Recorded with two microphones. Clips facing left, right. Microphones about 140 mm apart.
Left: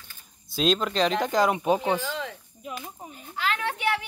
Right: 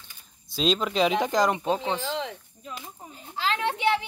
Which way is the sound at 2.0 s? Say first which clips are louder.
Right 2 dB; 20° right (ahead or behind).